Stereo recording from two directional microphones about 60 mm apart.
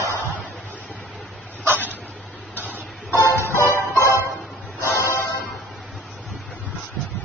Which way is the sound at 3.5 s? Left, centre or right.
Left.